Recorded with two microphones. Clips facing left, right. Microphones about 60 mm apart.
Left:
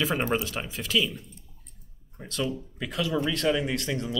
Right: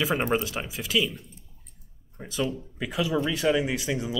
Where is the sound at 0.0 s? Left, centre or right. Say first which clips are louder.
Right 1 dB; centre.